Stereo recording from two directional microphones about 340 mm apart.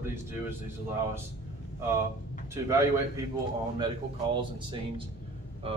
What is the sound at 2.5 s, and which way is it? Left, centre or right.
Speech, centre.